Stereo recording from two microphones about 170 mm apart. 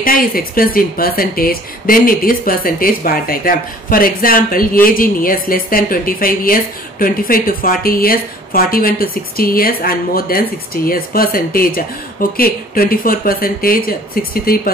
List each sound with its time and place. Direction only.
0.0 s a woman's voice: 55° left (ahead or behind)